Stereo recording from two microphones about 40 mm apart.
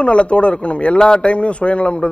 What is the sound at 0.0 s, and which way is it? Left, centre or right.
Speech, left.